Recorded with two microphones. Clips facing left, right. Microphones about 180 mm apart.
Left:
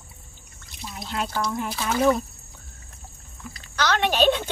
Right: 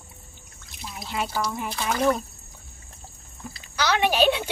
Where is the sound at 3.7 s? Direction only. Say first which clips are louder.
Right 1 dB; 10° right (ahead or behind).